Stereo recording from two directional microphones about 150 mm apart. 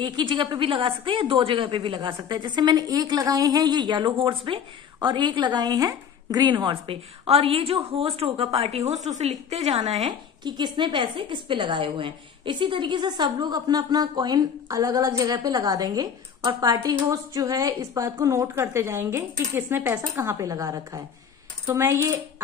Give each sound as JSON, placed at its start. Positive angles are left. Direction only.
{"t": 0.0, "sound": "a woman's voice", "side_deg": -30}
{"t": 10.4, "sound": "a woman's voice", "side_deg": -30}